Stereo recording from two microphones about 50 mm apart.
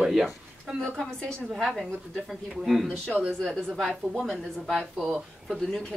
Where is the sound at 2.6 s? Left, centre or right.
Centre.